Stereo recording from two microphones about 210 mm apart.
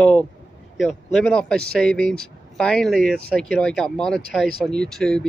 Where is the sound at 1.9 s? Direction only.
45° right (ahead or behind).